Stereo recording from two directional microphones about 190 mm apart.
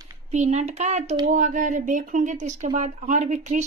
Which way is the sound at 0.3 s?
35° right (ahead or behind).